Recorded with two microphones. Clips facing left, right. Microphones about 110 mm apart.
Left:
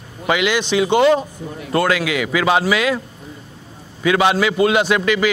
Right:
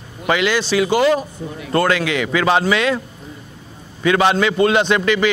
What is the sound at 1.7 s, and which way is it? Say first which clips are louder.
A man's voice: right 1 dB; 5° left (ahead or behind).